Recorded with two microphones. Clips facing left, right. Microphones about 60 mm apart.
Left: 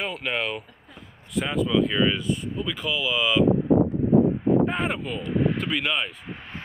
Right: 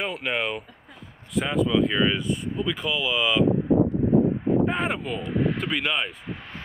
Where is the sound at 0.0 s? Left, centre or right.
Centre.